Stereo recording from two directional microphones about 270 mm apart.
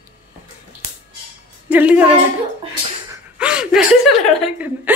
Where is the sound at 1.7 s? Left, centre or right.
Centre.